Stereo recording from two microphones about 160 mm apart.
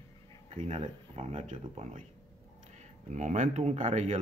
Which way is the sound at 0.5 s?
45° right (ahead or behind).